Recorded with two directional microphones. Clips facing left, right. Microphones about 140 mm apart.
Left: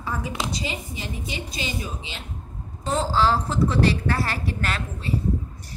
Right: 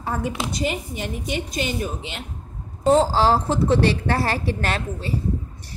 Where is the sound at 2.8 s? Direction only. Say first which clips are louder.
Right 5 dB; 40° right (ahead or behind).